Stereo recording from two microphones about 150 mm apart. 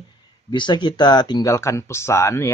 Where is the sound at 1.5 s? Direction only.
20° left (ahead or behind).